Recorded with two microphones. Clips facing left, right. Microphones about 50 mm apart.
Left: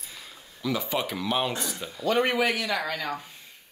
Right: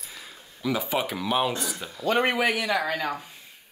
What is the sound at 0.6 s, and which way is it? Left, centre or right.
Speech, centre.